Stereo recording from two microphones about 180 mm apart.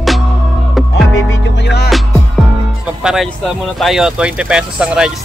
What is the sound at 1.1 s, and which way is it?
Music, 90° left.